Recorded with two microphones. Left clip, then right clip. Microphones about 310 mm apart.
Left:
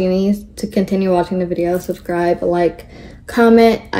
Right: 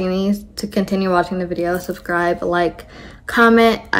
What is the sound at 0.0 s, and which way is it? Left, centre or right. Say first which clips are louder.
Speech: left 4 dB; centre.